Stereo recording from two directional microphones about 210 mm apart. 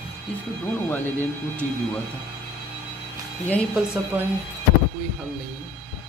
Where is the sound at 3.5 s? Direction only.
5° left (ahead or behind).